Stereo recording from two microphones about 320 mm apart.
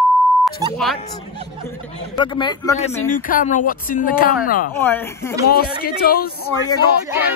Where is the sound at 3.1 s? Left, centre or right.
Left.